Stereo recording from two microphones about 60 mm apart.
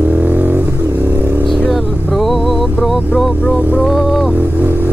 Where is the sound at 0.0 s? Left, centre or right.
Right.